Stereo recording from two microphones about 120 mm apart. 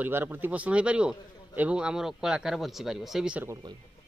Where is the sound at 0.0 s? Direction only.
15° right (ahead or behind).